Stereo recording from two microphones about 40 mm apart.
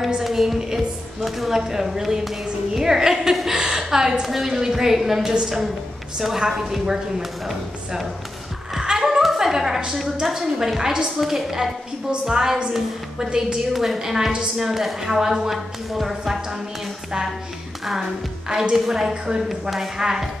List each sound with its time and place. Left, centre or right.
0.2 s music: centre
1.2 s a woman's voice: centre
8.7 s a sound: centre
9.2 s music: centre
10.2 s a woman's voice: centre
14.6 s a woman's voice: centre
18.5 s a woman's voice: centre